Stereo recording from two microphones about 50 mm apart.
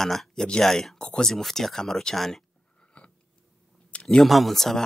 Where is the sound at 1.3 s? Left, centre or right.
Centre.